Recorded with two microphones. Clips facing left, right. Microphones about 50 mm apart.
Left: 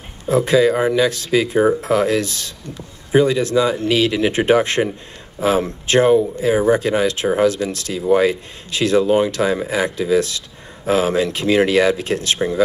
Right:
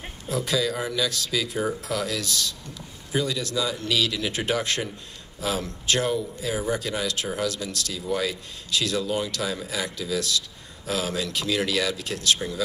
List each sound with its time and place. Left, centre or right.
0.3 s speech: left